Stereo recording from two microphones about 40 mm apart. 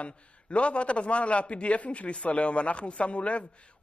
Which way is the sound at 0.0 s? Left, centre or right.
Left.